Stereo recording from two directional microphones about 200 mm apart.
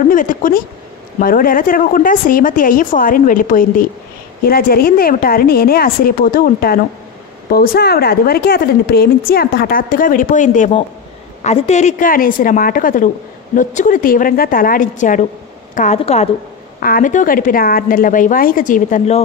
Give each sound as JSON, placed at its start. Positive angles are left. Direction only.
{"t": 0.1, "sound": "a woman's voice", "side_deg": 40}